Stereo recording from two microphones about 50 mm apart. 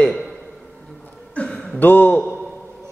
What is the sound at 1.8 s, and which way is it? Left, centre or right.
Speech, left.